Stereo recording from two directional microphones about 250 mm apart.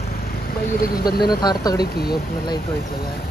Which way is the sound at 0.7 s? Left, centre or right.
Left.